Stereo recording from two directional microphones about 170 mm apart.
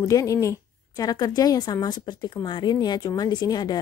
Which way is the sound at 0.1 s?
20° left (ahead or behind).